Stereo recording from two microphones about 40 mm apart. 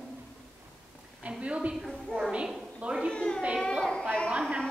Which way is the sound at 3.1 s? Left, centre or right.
Left.